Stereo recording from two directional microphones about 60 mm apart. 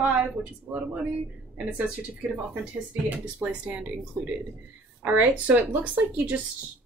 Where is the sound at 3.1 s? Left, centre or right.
Right.